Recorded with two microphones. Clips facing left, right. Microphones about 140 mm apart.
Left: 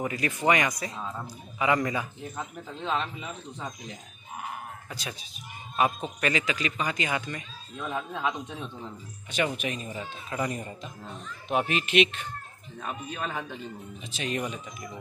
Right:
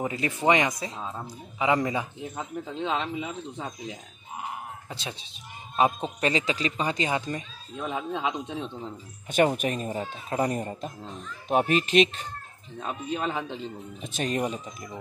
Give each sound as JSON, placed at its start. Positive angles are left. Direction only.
{"t": 0.0, "sound": "speech", "side_deg": -25}
{"t": 9.3, "sound": "speech", "side_deg": -50}
{"t": 12.8, "sound": "speech", "side_deg": -20}
{"t": 14.0, "sound": "speech", "side_deg": -50}
{"t": 14.3, "sound": "speech", "side_deg": -35}